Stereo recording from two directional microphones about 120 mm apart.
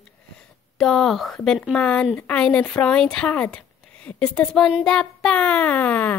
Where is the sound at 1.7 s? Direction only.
10° left (ahead or behind).